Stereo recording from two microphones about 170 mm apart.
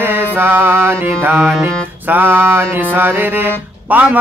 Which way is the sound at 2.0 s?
10° right (ahead or behind).